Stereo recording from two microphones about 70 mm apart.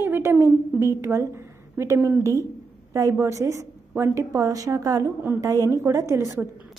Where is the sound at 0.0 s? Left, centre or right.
Right.